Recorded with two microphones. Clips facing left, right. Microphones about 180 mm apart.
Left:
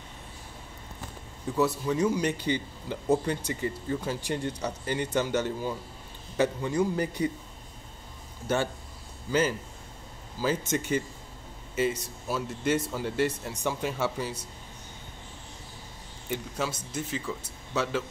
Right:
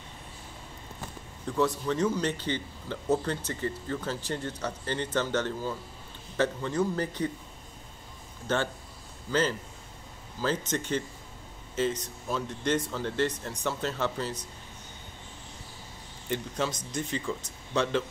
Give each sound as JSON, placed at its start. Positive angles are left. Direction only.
{"t": 1.4, "sound": "a man's voice", "side_deg": 10}
{"t": 8.5, "sound": "a man's voice", "side_deg": 10}
{"t": 16.3, "sound": "a man's voice", "side_deg": 10}